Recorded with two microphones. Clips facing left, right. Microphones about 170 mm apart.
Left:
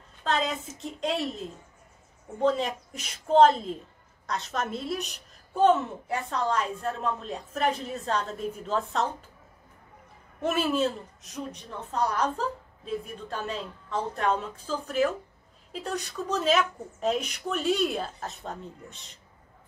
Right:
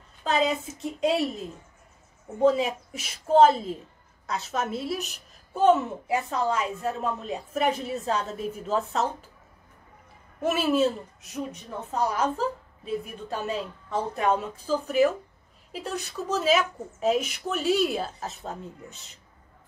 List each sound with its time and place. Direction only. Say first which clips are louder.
0.2 s a woman's voice: right 3 dB; 5° right (ahead or behind)
2.4 s a woman's voice: right 4 dB; 5° right (ahead or behind)
10.4 s a woman's voice: right 3 dB; 5° right (ahead or behind)